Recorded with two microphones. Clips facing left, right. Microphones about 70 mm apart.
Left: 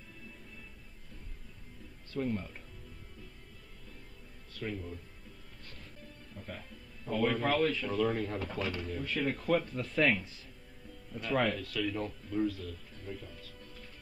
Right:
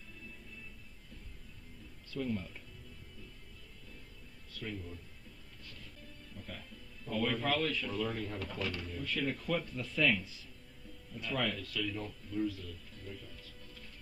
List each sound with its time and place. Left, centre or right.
2.0 s speech: left
6.5 s speech: left
8.0 s speech: left
8.4 s speech: left
8.9 s speech: left
13.1 s speech: left